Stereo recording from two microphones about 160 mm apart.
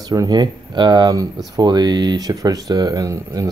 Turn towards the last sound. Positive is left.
turn(degrees=-20)  # may be behind; listen again after turning